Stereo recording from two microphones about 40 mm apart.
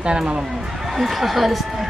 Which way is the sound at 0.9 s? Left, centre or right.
Centre.